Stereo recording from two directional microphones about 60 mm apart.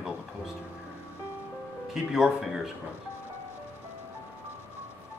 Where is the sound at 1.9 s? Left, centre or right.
Centre.